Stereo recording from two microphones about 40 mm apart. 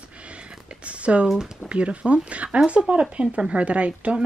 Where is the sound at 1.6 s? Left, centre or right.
Right.